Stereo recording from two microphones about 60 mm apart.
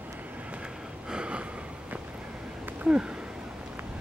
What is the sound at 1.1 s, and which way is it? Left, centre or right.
Gasp, centre.